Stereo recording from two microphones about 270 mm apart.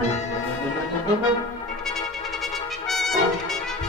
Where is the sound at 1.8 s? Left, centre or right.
Centre.